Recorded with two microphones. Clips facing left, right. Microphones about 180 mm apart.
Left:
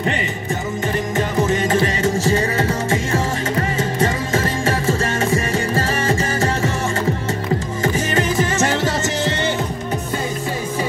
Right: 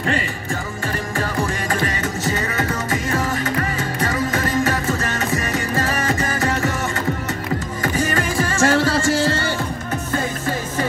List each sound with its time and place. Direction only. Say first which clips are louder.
1.1 s music: left 5 dB; 20° left (ahead or behind)
7.8 s music: left 1 dB; 25° left (ahead or behind)